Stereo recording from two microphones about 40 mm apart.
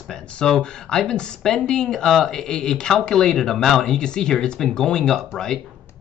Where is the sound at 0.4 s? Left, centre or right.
Centre.